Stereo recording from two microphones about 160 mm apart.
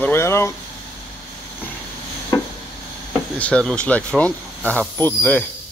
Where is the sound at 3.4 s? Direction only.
5° left (ahead or behind).